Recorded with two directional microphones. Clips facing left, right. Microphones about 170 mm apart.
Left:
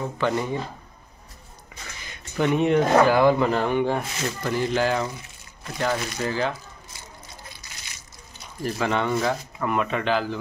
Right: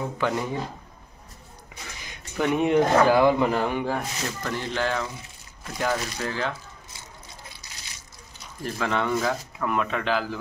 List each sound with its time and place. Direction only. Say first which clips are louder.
0.2 s speech: left 3 dB; centre (ahead or behind)
2.3 s speech: left 1 dB; 5° right (ahead or behind)
8.6 s speech: left 2 dB; 5° left (ahead or behind)